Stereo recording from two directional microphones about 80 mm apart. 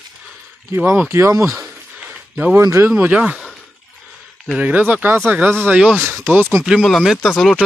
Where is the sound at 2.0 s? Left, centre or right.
Right.